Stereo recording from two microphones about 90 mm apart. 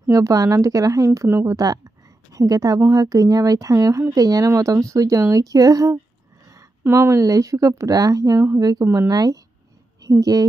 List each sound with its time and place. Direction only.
0.1 s speech: 40° right (ahead or behind)